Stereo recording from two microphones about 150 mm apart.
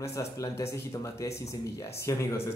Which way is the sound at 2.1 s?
20° left (ahead or behind).